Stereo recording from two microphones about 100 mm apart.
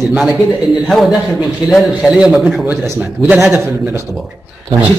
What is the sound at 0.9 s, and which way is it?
A man's voice, centre (ahead or behind).